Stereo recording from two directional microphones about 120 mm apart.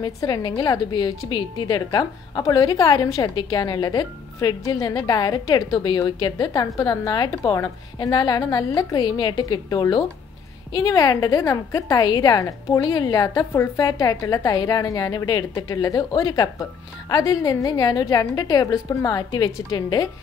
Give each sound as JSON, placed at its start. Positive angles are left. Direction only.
{"t": 0.0, "sound": "speech", "side_deg": 35}